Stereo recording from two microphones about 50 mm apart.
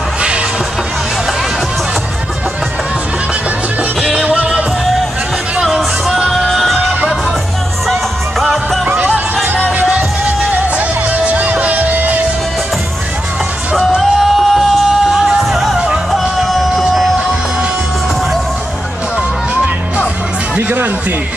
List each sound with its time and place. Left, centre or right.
4.1 s music: centre
6.2 s music: centre
8.8 s music: right
11.1 s music: right
13.9 s music: centre